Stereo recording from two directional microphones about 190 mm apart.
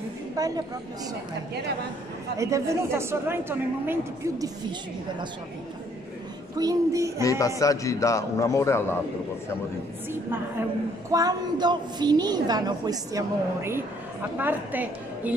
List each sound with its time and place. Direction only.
0.4 s a woman's voice: 20° right (ahead or behind)
2.3 s a woman's voice: 15° right (ahead or behind)
6.6 s a woman's voice: 20° right (ahead or behind)
7.2 s a man's voice: 15° left (ahead or behind)
11.1 s a woman's voice: 20° right (ahead or behind)